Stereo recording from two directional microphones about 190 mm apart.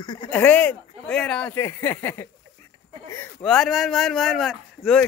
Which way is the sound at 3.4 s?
Centre (ahead or behind).